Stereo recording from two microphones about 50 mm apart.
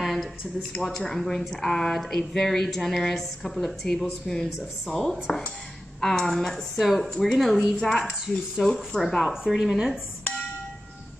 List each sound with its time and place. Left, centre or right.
0.0 s a sound: centre
0.7 s speech: centre
9.5 s a woman's voice: centre